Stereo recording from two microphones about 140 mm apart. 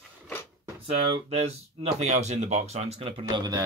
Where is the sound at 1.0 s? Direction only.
50° right (ahead or behind).